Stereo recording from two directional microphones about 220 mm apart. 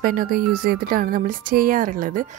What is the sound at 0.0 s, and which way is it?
A woman's voice, 40° right (ahead or behind).